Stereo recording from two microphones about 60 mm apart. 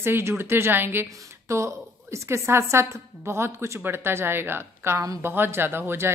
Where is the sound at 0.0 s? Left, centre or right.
Right.